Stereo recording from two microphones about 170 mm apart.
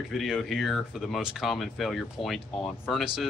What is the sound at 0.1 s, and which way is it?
Speech, centre (ahead or behind).